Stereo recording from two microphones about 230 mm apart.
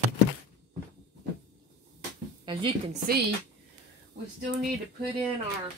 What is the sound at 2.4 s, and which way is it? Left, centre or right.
Speech, right.